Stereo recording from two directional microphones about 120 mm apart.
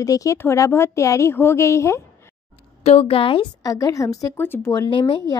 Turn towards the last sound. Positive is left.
turn(degrees=40)  # may be behind; listen again after turning